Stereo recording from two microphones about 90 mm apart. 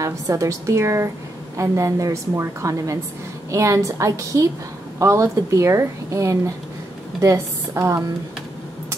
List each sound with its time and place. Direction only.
0.0 s a woman's voice: 35° right (ahead or behind)